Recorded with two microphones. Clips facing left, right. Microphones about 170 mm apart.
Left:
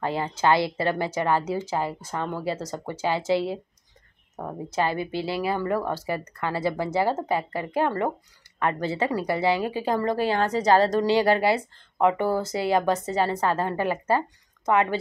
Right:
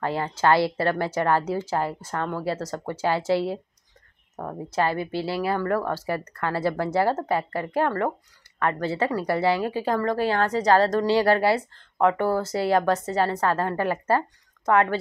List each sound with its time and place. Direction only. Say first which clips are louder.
0.0 s a woman's voice: right 1 dB; 20° left (ahead or behind)
4.4 s a woman's voice: right 1 dB; 20° left (ahead or behind)